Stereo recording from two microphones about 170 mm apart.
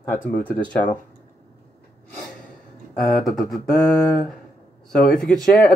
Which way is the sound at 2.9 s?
Centre (ahead or behind).